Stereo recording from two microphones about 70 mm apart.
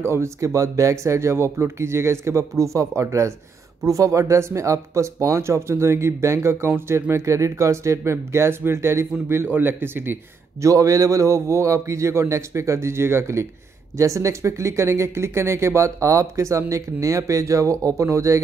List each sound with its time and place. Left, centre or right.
0.0 s speech: right
10.6 s speech: right